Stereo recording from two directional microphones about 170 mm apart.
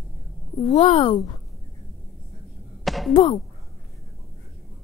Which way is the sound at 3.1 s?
25° left (ahead or behind).